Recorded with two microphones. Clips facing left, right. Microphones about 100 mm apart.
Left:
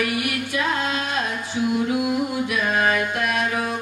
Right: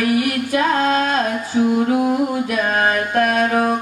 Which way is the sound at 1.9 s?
40° right (ahead or behind).